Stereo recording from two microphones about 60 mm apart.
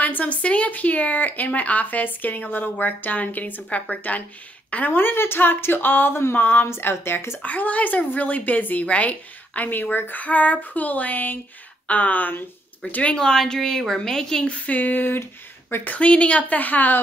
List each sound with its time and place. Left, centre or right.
0.0 s a woman's voice: left
7.4 s speech: left